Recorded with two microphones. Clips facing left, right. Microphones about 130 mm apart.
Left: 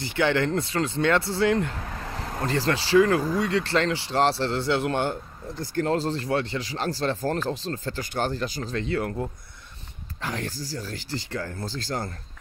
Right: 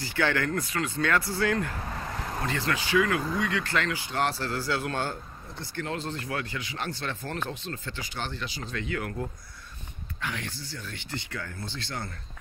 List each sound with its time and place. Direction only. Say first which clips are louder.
0.0 s speech: left 4 dB; 20° left (ahead or behind)
2.4 s speech: left 6 dB; 35° left (ahead or behind)
5.6 s speech: left 9 dB; 40° left (ahead or behind)
10.2 s speech: left 4 dB; 40° left (ahead or behind)